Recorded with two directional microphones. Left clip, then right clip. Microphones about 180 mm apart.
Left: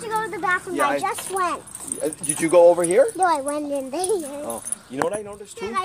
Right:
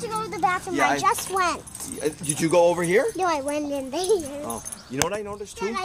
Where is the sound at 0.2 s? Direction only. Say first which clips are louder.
Right 1 dB; 50° right (ahead or behind).